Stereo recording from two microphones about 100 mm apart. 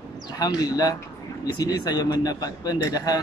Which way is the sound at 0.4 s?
40° left (ahead or behind).